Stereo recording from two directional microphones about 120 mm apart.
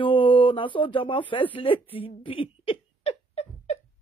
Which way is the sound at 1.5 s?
50° left (ahead or behind).